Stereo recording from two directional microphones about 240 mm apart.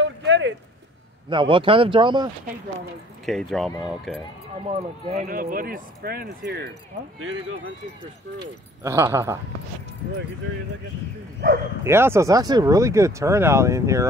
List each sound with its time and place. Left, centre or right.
0.0 s a sound: right
1.3 s speech: right
3.3 s speech: centre
4.6 s speech: right
8.4 s speech: centre
11.8 s speech: centre